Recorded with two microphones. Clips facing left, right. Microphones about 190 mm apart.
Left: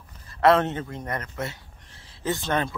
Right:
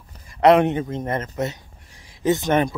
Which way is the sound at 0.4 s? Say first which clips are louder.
Right 5 dB; 15° right (ahead or behind).